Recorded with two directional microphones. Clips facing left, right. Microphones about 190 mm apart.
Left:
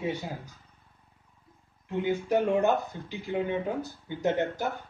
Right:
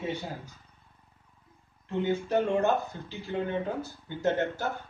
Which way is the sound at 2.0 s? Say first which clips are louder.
Left 1 dB; 15° left (ahead or behind).